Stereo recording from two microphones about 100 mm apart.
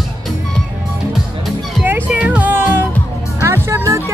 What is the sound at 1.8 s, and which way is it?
Music, 15° right (ahead or behind).